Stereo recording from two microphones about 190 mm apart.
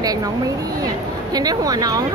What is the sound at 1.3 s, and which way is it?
Speech, 20° right (ahead or behind).